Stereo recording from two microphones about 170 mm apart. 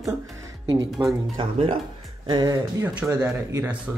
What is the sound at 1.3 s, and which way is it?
Speech, 30° right (ahead or behind).